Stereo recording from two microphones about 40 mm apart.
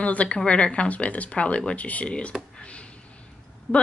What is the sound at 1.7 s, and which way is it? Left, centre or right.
Speech, left.